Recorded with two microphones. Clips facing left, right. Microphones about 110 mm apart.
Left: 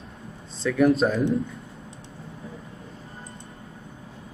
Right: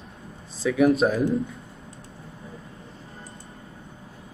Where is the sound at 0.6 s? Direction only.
5° right (ahead or behind).